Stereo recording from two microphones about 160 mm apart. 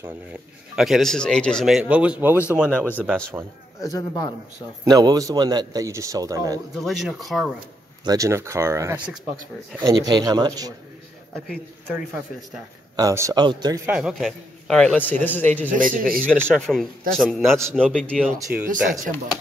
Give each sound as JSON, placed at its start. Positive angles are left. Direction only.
{"t": 0.0, "sound": "speech", "side_deg": -5}
{"t": 2.8, "sound": "speech", "side_deg": 10}
{"t": 3.4, "sound": "a man's voice", "side_deg": -20}
{"t": 3.8, "sound": "a man's voice", "side_deg": 25}
{"t": 4.8, "sound": "a man's voice", "side_deg": -25}
{"t": 6.8, "sound": "speech", "side_deg": 0}
{"t": 8.0, "sound": "a man's voice", "side_deg": -20}
{"t": 12.9, "sound": "a man's voice", "side_deg": -20}
{"t": 13.8, "sound": "speech", "side_deg": -5}
{"t": 15.7, "sound": "speech", "side_deg": -55}
{"t": 16.3, "sound": "speech", "side_deg": 5}
{"t": 18.7, "sound": "speech", "side_deg": -55}